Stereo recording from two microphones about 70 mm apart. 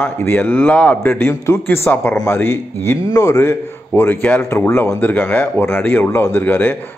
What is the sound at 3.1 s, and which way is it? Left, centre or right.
Speech, left.